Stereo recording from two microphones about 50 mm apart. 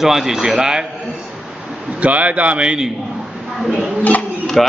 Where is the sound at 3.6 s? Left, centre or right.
Centre.